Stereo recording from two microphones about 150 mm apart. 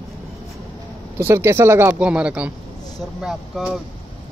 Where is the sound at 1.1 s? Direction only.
15° right (ahead or behind); by 3.7 s centre (ahead or behind).